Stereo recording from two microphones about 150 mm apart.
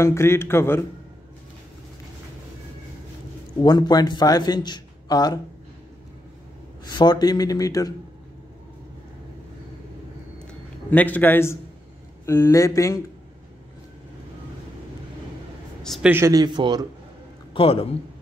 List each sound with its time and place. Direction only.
0.0 s a man's voice: 20° left (ahead or behind)
3.6 s a man's voice: 30° left (ahead or behind)
6.8 s a man's voice: 30° left (ahead or behind)
10.4 s a sound: 10° left (ahead or behind)
12.3 s a man's voice: 20° left (ahead or behind)
15.8 s a sound: centre (ahead or behind)
16.1 s a man's voice: 20° right (ahead or behind)
17.6 s a man's voice: 40° left (ahead or behind)